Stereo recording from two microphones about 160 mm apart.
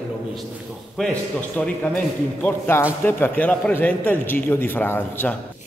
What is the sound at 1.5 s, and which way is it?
A man's voice, 10° left (ahead or behind).